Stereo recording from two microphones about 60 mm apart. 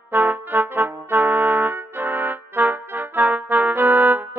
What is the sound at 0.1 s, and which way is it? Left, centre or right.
Brass instrument, right.